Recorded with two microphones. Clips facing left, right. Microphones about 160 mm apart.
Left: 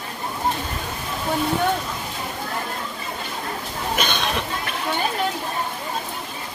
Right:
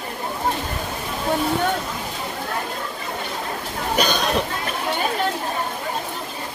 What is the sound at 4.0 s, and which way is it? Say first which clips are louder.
Speech: right 5 dB; 40° right (ahead or behind).